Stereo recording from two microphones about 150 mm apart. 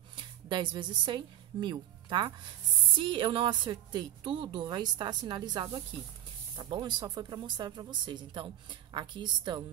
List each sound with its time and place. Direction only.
0.1 s a woman's voice: 35° right (ahead or behind)